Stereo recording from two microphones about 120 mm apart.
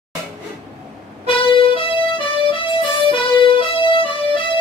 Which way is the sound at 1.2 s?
45° left (ahead or behind).